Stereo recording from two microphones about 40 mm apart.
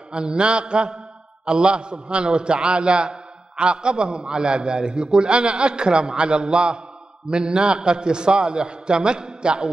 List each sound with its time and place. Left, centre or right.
0.1 s a man's voice: right